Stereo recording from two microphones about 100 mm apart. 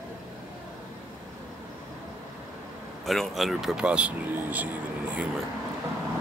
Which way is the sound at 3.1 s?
Centre (ahead or behind).